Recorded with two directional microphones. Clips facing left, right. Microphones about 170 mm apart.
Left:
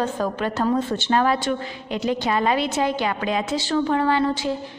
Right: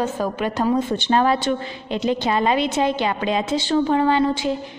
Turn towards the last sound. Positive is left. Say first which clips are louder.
# right 2 dB
turn(degrees=-15)  # may be behind; listen again after turning